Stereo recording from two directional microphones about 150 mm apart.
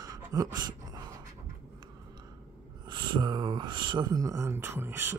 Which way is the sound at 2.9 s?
30° right (ahead or behind).